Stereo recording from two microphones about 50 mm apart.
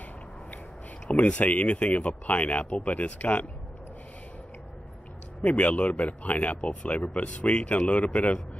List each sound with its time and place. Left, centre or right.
1.0 s speech: left
5.4 s speech: left